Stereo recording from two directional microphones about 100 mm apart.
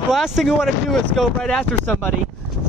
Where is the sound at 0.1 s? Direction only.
Centre (ahead or behind).